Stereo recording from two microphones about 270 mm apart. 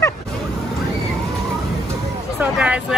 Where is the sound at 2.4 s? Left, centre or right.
Centre.